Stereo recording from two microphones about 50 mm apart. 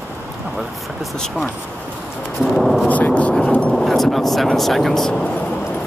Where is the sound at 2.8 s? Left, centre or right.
Left.